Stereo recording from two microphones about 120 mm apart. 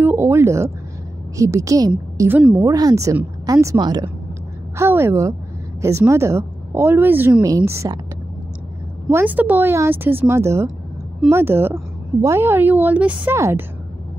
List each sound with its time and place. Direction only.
0.0 s a woman's voice: 20° right (ahead or behind)
2.2 s speech: 10° right (ahead or behind)
2.6 s speech: 30° right (ahead or behind)
4.7 s a woman's voice: 20° right (ahead or behind)
7.4 s a woman's voice: 25° right (ahead or behind)
9.1 s a woman's voice: 15° right (ahead or behind)